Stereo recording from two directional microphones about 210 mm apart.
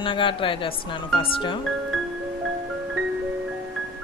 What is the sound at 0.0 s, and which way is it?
Speech, 25° left (ahead or behind).